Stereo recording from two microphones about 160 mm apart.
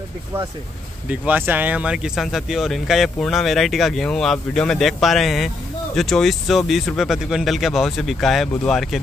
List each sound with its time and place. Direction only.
1.0 s speech: 10° right (ahead or behind)